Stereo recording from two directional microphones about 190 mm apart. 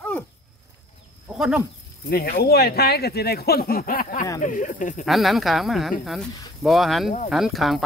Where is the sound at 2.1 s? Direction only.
55° left (ahead or behind).